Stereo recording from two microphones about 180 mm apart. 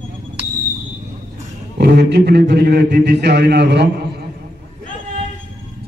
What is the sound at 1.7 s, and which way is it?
A man's voice, 65° right (ahead or behind).